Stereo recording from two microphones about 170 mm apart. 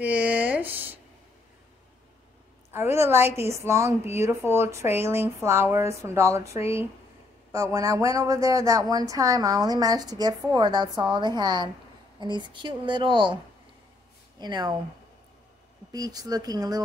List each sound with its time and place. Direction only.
0.0 s speech: 10° right (ahead or behind)
2.7 s speech: 15° right (ahead or behind)
14.4 s speech: 25° right (ahead or behind)
15.9 s speech: 20° right (ahead or behind)